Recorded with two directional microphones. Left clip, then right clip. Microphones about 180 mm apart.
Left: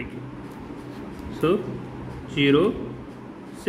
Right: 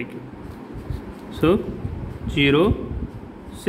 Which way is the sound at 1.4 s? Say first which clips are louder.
Right 3 dB; 40° right (ahead or behind).